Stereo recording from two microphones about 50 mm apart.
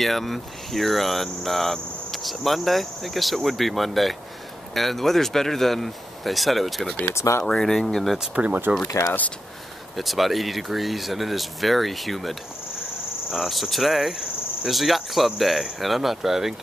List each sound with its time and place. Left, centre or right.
0.0 s speech: centre
7.2 s speech: left
7.4 s speech: centre
8.7 s speech: right
9.9 s speech: centre